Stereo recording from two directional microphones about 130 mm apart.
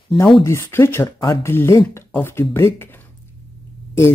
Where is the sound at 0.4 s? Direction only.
20° left (ahead or behind).